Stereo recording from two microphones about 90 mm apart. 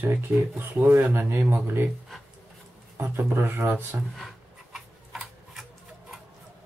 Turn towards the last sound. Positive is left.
turn(degrees=-5)  # may be behind; listen again after turning